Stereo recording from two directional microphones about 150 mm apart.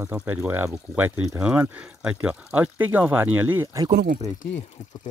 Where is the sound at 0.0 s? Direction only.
10° right (ahead or behind).